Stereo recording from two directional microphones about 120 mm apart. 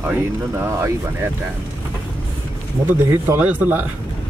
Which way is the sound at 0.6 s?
20° right (ahead or behind).